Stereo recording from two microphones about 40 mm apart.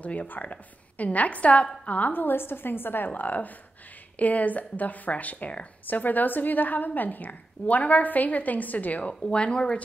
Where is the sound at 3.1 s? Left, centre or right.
Left.